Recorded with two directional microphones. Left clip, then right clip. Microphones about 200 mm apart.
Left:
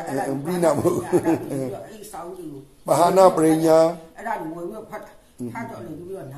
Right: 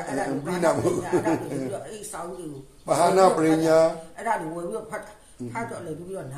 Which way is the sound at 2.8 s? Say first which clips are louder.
Left 4 dB; 40° left (ahead or behind).